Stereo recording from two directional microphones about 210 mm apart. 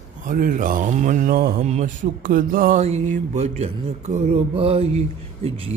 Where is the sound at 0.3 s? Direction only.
40° right (ahead or behind).